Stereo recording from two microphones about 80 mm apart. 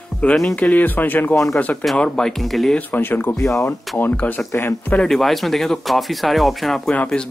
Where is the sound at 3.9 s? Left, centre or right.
Left.